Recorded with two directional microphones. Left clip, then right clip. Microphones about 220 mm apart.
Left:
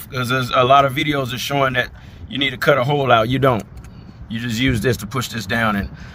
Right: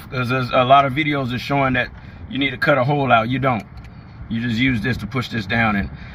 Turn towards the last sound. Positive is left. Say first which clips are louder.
# even
turn(degrees=50)  # may be behind; listen again after turning